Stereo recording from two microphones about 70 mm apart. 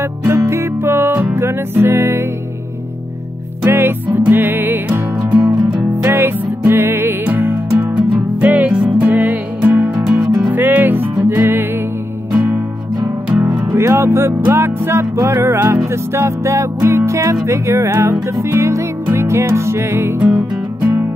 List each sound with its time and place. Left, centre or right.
0.3 s music: right
3.6 s music: right
6.0 s music: right
7.7 s music: centre
13.7 s music: right